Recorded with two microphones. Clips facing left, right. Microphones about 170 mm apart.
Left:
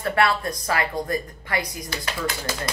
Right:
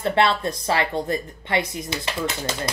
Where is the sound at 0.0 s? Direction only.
25° right (ahead or behind).